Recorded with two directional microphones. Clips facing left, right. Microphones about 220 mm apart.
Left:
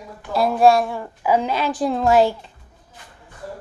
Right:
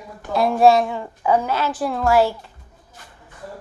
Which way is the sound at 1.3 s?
15° left (ahead or behind).